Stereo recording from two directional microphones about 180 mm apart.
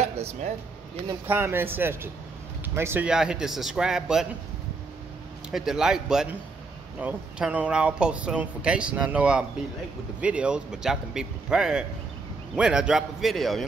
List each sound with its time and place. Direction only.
0.0 s a sound: 35° right (ahead or behind)
1.0 s speech: 10° right (ahead or behind)
5.5 s speech: 5° right (ahead or behind)